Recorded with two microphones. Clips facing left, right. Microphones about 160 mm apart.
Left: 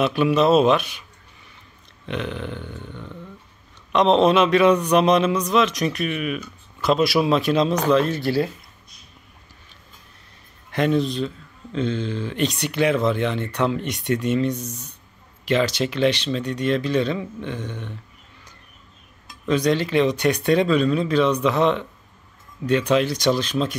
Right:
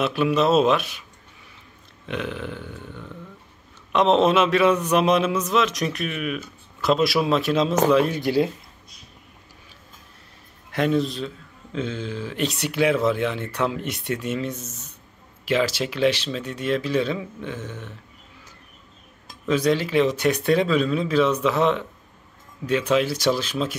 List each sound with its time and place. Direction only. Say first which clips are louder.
0.0 s speech: left 2 dB; centre (ahead or behind)
2.0 s speech: left 1 dB; 5° right (ahead or behind)
7.9 s speech: even; 10° right (ahead or behind)
10.7 s speech: left 1 dB; centre (ahead or behind)
19.4 s speech: left 1 dB; 5° right (ahead or behind)